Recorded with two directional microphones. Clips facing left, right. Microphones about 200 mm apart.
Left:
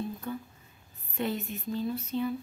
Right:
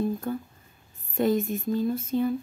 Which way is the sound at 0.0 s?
45° right (ahead or behind).